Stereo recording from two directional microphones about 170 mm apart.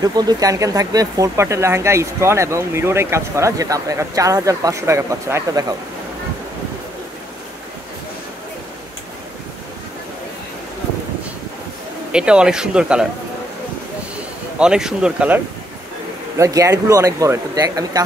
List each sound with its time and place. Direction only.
0.0 s speech: 25° right (ahead or behind)
12.1 s speech: 5° right (ahead or behind)
14.6 s speech: 5° right (ahead or behind)
16.3 s speech: 20° right (ahead or behind)